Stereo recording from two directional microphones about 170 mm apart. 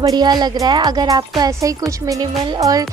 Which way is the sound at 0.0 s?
25° right (ahead or behind).